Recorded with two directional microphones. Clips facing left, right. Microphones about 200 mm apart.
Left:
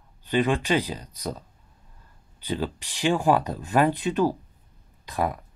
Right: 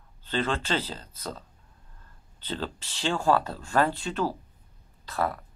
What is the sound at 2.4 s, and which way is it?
Speech, 15° left (ahead or behind).